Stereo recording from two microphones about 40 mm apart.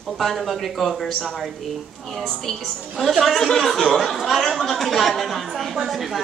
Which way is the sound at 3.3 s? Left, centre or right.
Centre.